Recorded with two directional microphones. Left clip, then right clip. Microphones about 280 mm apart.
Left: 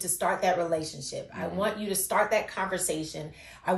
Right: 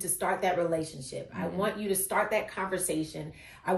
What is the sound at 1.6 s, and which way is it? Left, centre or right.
Speech, centre.